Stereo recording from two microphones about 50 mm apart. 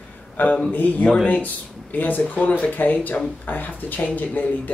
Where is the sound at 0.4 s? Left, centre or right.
Left.